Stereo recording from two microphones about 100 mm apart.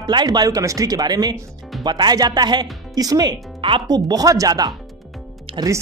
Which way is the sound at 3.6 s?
60° right (ahead or behind).